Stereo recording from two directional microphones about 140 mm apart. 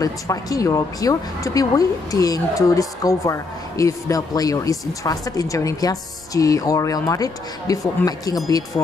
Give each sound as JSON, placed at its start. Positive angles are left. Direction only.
{"t": 0.0, "sound": "speech", "side_deg": 25}